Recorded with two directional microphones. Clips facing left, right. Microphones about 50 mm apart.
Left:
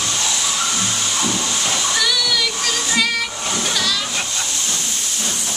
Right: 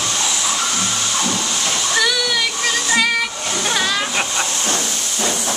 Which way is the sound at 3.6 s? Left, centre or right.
Right.